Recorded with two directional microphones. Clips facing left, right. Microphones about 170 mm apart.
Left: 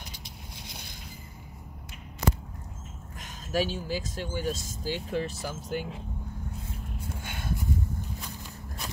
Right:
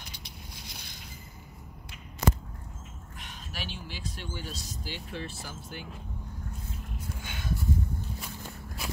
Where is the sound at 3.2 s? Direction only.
45° left (ahead or behind).